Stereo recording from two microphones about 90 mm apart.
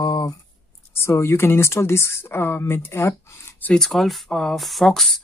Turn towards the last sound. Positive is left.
turn(degrees=5)  # may be behind; listen again after turning